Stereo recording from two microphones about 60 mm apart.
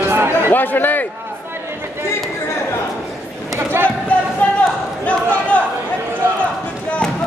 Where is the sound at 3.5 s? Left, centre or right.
Right.